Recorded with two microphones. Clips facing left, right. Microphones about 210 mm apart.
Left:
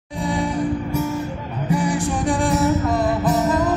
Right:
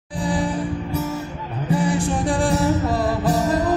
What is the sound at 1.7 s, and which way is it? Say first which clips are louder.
Music: even; 30° right (ahead or behind).